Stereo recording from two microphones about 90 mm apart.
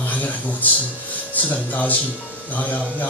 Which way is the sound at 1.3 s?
20° left (ahead or behind).